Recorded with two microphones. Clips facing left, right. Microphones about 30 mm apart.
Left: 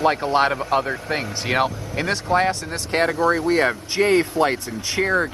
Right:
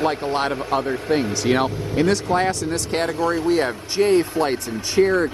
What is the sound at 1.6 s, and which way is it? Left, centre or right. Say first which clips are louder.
Speech: right 2 dB; centre.